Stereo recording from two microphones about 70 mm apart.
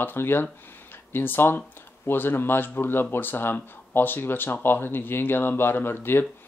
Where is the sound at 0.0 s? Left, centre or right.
Left.